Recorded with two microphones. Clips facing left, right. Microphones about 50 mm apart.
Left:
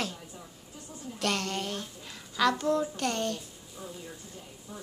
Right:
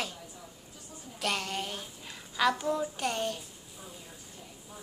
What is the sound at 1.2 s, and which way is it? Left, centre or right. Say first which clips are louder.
A woman's voice: left 2 dB; centre.